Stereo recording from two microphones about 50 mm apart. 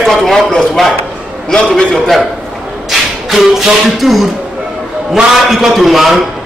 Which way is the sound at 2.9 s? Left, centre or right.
Centre.